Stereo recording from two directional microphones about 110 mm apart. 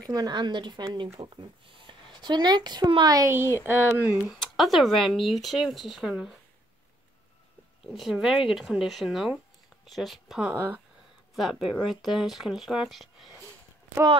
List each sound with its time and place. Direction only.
0.1 s speech: 40° right (ahead or behind)
3.6 s speech: 15° right (ahead or behind)
4.3 s speech: centre (ahead or behind)
7.8 s speech: 5° right (ahead or behind)
11.3 s speech: centre (ahead or behind)